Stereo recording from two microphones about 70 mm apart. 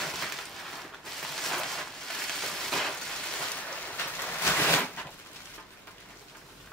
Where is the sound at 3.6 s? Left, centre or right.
Left.